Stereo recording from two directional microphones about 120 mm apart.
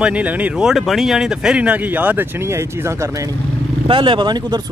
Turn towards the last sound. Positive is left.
turn(degrees=-35)  # may be behind; listen again after turning